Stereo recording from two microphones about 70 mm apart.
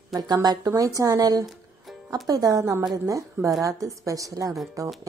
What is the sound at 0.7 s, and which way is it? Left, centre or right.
A woman's voice, right.